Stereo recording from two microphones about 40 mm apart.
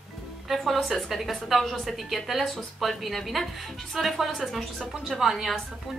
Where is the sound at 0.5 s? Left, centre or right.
Centre.